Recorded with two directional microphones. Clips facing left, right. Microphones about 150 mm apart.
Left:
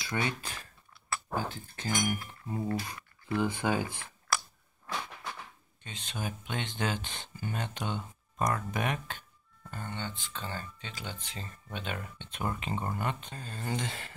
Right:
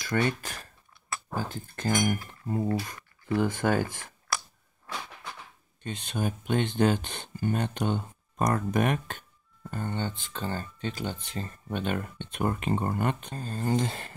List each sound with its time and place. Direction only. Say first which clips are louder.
0.0 s speech: right 6 dB; 50° right (ahead or behind)
5.9 s speech: right 7 dB; 55° right (ahead or behind)
13.4 s a sound: right 11 dB; 40° right (ahead or behind)